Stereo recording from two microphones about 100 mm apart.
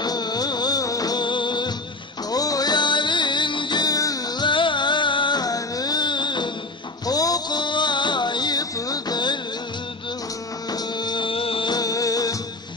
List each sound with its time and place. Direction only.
0.0 s music: 45° left (ahead or behind)
2.3 s music: 40° left (ahead or behind)
4.5 s music: 55° left (ahead or behind)
7.1 s music: 40° left (ahead or behind)
10.7 s music: 45° left (ahead or behind); by 11.7 s 65° left (ahead or behind)
11.7 s music: 40° left (ahead or behind)